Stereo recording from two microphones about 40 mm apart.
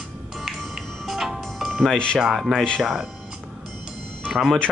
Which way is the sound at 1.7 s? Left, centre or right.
Centre.